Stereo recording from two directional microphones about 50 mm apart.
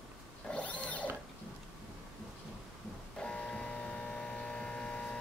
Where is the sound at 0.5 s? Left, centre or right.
Left.